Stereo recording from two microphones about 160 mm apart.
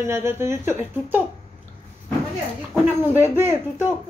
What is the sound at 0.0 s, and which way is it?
Speech, 15° right (ahead or behind).